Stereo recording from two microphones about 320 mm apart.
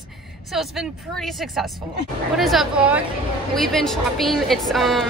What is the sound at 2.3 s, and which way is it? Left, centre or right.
A woman's voice, centre.